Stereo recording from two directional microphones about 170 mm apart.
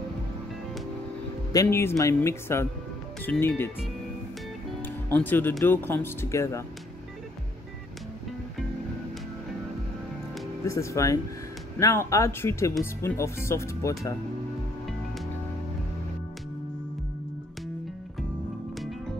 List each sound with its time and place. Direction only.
1.5 s speech: 15° left (ahead or behind)
4.8 s speech: 10° left (ahead or behind)
10.7 s speech: 15° left (ahead or behind)